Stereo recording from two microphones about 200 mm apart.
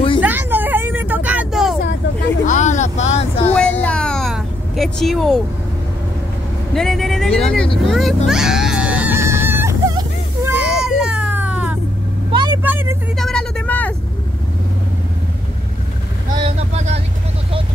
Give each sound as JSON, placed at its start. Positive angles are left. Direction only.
{"t": 0.2, "sound": "vehicle", "side_deg": -10}
{"t": 2.4, "sound": "vehicle", "side_deg": 35}
{"t": 3.5, "sound": "vehicle", "side_deg": 5}
{"t": 6.7, "sound": "speech", "side_deg": 0}
{"t": 7.9, "sound": "a sound", "side_deg": 0}
{"t": 12.3, "sound": "vehicle", "side_deg": -25}
{"t": 12.6, "sound": "vehicle", "side_deg": -10}
{"t": 13.2, "sound": "vehicle", "side_deg": 5}
{"t": 16.4, "sound": "vehicle", "side_deg": -35}